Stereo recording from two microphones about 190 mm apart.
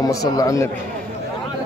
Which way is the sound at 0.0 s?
20° left (ahead or behind).